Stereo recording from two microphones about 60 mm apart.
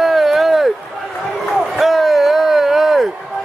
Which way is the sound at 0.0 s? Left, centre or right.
Centre.